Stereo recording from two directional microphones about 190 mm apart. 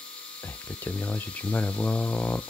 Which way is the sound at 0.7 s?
10° left (ahead or behind).